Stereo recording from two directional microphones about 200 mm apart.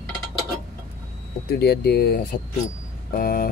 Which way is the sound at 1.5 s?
55° left (ahead or behind).